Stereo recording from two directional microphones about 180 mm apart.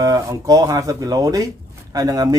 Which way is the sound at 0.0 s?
15° right (ahead or behind).